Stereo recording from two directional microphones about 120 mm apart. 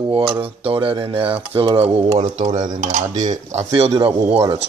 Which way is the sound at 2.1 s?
90° right.